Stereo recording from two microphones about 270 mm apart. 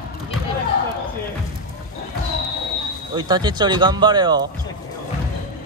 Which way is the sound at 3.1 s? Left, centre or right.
Centre.